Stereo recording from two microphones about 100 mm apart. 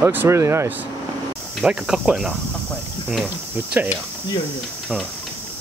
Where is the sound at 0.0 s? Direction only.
25° right (ahead or behind).